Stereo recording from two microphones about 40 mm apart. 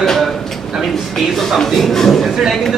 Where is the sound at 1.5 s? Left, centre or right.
Centre.